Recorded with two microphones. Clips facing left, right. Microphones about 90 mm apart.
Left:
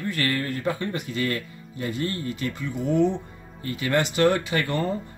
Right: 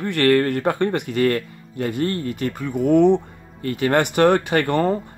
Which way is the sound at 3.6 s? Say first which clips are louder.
Right 5 dB; 55° right (ahead or behind).